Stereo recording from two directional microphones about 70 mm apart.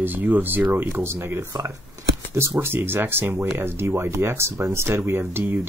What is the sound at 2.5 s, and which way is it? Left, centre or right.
Speech, right.